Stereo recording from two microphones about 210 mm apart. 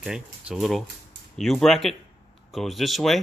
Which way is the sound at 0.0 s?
5° right (ahead or behind).